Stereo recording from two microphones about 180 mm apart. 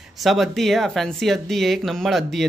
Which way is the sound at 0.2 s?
Centre (ahead or behind).